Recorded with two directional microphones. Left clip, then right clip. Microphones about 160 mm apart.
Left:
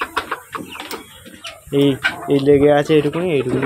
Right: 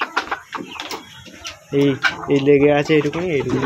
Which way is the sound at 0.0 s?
15° right (ahead or behind).